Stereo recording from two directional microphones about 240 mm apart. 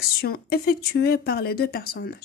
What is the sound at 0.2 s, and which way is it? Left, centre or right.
Speech, left.